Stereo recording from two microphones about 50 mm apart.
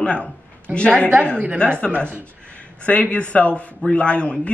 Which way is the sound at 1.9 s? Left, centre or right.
Right.